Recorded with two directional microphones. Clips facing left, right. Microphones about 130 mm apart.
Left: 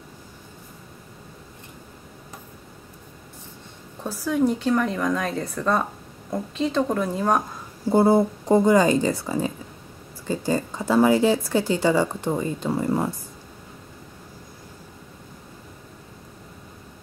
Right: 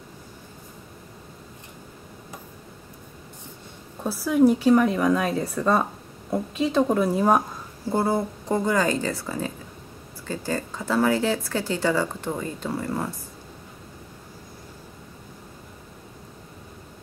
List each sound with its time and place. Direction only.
4.0 s speech: 10° right (ahead or behind)
7.9 s speech: 20° left (ahead or behind)